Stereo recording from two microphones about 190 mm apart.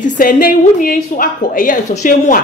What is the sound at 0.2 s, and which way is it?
A woman's voice, 45° left (ahead or behind).